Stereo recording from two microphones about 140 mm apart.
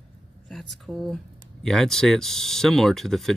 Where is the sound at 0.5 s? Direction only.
Centre (ahead or behind).